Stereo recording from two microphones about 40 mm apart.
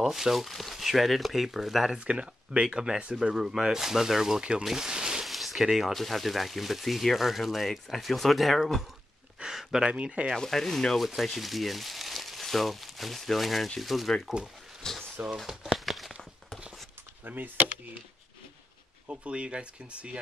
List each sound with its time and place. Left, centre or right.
0.0 s speech: centre
2.0 s speech: right
2.6 s speech: centre
5.2 s a sound: centre
5.9 s speech: centre
9.6 s a sound: centre
9.9 s speech: right
10.3 s speech: centre
11.0 s speech: centre
14.8 s a sound: centre
15.3 s a sound: centre
17.3 s speech: right
19.0 s speech: right